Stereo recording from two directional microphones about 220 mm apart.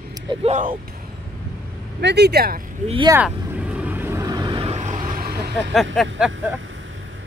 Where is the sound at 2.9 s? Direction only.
20° right (ahead or behind).